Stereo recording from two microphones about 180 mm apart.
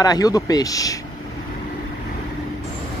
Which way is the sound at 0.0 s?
20° left (ahead or behind).